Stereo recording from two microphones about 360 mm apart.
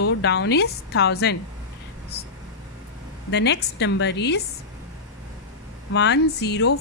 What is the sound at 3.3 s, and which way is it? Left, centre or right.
A woman's voice, left.